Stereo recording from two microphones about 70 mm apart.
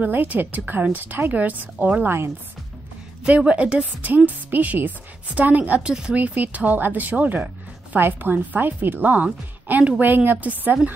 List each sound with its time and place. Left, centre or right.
0.0 s a woman's voice: right
2.0 s speech: right
3.3 s a woman's voice: centre
4.5 s a woman's voice: right; by 6.1 s centre
6.1 s a woman's voice: right
9.1 s a woman's voice: centre